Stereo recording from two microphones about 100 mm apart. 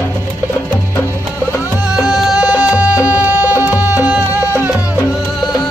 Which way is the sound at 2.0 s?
5° right (ahead or behind).